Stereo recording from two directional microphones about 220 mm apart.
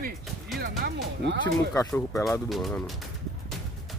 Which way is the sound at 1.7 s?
10° left (ahead or behind).